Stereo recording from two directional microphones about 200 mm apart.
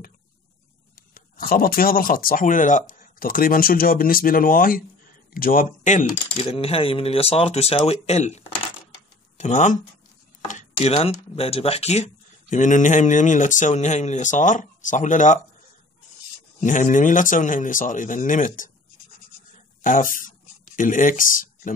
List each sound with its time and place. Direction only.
1.1 s speech: 45° left (ahead or behind)
16.6 s speech: 40° left (ahead or behind)
19.8 s speech: 40° left (ahead or behind)